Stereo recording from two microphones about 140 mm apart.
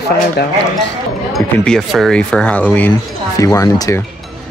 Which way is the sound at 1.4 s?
Centre (ahead or behind).